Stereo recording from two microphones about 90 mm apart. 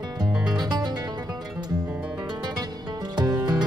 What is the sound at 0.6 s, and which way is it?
Music, 50° right (ahead or behind).